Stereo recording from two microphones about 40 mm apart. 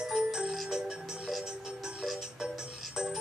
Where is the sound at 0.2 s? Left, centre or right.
Centre.